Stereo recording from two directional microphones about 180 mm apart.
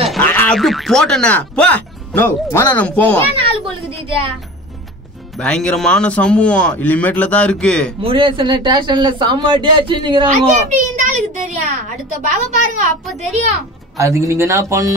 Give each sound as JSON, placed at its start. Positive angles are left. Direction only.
{"t": 0.0, "sound": "boing", "side_deg": 0}
{"t": 0.3, "sound": "speech", "side_deg": 10}
{"t": 5.4, "sound": "speech", "side_deg": 5}
{"t": 8.0, "sound": "speech", "side_deg": -30}
{"t": 11.0, "sound": "a woman's voice", "side_deg": -40}
{"t": 13.9, "sound": "speech", "side_deg": -15}